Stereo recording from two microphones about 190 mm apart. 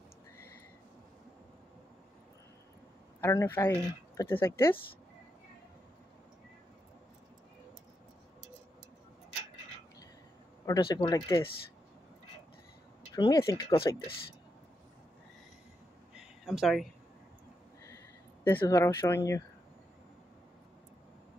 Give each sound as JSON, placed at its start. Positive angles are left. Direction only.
{"t": 3.2, "sound": "speech", "side_deg": 15}
{"t": 10.7, "sound": "speech", "side_deg": 20}
{"t": 13.1, "sound": "speech", "side_deg": 20}
{"t": 16.2, "sound": "a sound", "side_deg": 0}
{"t": 18.4, "sound": "speech", "side_deg": 10}